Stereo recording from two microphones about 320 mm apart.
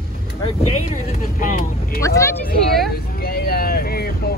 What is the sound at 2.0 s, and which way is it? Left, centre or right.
Speech, centre.